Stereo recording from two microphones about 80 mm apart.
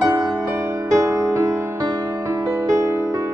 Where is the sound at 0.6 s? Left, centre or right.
Right.